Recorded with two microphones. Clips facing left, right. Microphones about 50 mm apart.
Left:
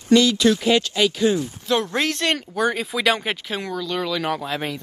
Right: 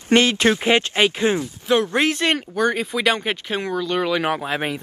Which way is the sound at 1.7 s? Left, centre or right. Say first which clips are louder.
Right 3 dB; centre.